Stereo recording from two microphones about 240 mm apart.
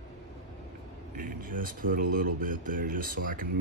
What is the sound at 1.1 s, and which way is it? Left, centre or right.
Speech, right.